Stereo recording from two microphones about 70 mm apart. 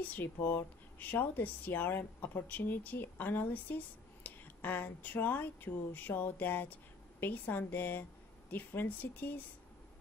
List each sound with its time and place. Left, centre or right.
0.0 s speech: left